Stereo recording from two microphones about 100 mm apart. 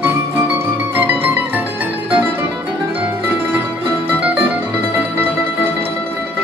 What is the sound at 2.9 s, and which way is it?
Music, 20° right (ahead or behind).